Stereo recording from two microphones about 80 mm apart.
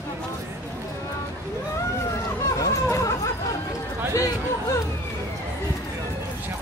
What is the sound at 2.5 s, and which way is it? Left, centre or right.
Chatter, left.